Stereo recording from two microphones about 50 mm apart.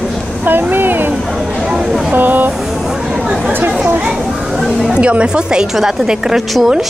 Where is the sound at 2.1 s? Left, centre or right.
Right.